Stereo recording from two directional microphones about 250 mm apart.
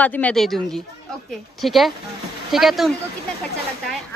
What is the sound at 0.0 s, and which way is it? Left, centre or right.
Speech, centre.